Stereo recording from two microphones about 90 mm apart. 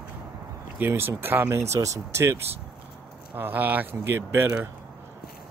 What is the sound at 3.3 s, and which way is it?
Speech, 20° right (ahead or behind).